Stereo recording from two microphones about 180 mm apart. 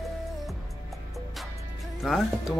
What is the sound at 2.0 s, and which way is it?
Speech, centre (ahead or behind).